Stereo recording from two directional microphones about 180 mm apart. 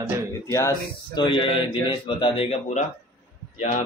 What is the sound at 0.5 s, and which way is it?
Speech, 20° left (ahead or behind).